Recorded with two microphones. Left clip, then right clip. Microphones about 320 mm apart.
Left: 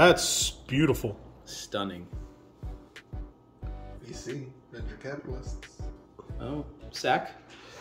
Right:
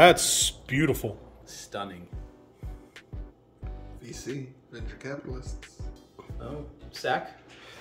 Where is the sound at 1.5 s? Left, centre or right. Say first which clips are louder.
Left 3 dB; left.